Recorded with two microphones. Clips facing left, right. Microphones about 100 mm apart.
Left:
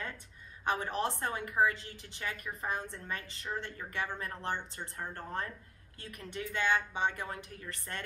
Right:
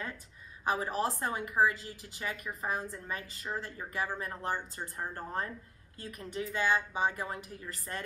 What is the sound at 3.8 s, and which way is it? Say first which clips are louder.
Speech: right 2 dB; 20° right (ahead or behind).